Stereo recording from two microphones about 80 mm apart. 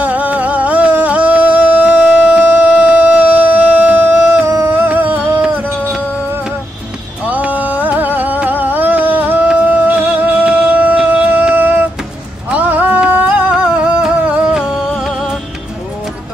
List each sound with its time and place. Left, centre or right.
0.0 s music: centre
7.2 s music: centre
10.4 s a sound: centre
12.4 s music: right